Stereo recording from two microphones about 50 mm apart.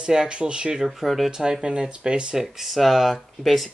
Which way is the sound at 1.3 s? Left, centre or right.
Centre.